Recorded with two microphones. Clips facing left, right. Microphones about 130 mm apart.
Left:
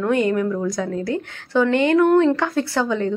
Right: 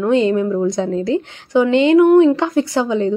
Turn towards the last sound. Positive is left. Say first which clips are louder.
# right 4 dB
turn(degrees=-15)  # may be behind; listen again after turning